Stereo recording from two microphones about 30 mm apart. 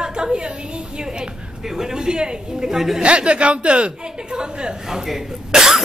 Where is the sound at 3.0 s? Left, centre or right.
Right.